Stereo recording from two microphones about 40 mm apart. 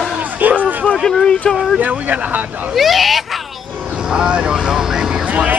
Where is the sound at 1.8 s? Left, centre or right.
Right.